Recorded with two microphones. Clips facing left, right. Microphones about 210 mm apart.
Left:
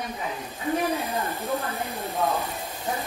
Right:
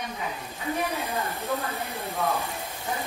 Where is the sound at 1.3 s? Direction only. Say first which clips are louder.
Left 1 dB; 15° left (ahead or behind).